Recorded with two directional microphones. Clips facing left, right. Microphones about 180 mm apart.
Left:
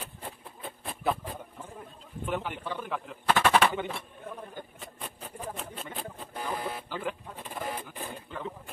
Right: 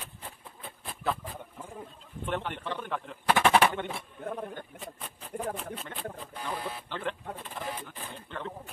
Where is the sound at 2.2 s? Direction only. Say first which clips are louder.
Even; 5° left (ahead or behind).